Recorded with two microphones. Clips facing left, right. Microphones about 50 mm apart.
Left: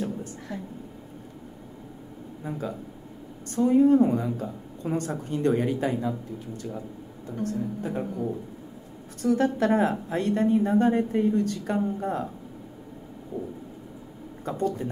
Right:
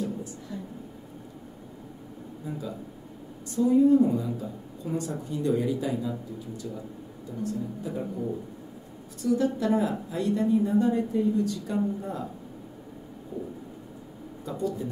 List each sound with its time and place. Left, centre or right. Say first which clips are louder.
0.0 s a sound: left 1 dB; left
3.5 s a woman's voice: left 1 dB; left
9.2 s a woman's voice: left 2 dB; left
14.4 s a woman's voice: left 3 dB; left